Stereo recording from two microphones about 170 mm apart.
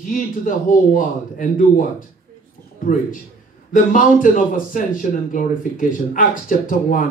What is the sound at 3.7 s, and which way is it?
A man's voice, 50° left (ahead or behind).